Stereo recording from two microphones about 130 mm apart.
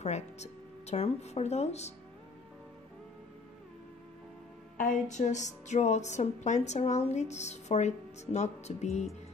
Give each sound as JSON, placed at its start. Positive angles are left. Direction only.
{"t": 0.0, "sound": "a woman's voice", "side_deg": 55}
{"t": 4.7, "sound": "a woman's voice", "side_deg": 70}